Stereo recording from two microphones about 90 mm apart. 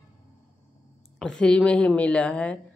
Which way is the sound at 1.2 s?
10° left (ahead or behind).